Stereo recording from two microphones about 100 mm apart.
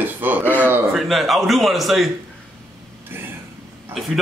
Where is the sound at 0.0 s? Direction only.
20° right (ahead or behind).